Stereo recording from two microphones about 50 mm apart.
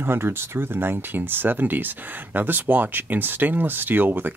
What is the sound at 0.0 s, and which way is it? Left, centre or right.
Speech, right.